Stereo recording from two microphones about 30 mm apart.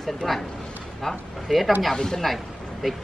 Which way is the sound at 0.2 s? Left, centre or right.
Centre.